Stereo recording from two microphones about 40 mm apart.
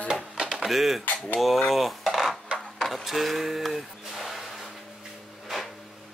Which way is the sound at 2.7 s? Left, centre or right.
Centre.